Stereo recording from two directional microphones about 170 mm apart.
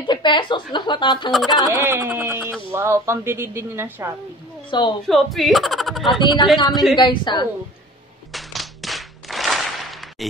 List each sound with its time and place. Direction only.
0.0 s a woman's voice: 25° left (ahead or behind)
1.3 s speech: centre (ahead or behind)
1.7 s a woman's voice: 15° right (ahead or behind)
4.6 s a woman's voice: 30° left (ahead or behind)
5.0 s speech: centre (ahead or behind)
7.0 s a woman's voice: 25° left (ahead or behind)
8.3 s a sound: centre (ahead or behind)